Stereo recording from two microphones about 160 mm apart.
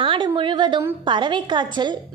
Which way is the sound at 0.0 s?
30° right (ahead or behind).